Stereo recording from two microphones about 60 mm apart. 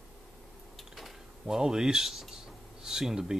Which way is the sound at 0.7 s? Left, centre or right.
Centre.